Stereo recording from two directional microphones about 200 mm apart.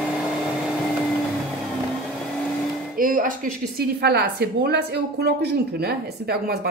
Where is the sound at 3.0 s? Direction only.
45° right (ahead or behind).